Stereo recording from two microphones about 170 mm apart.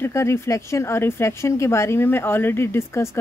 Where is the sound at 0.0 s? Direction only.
15° left (ahead or behind).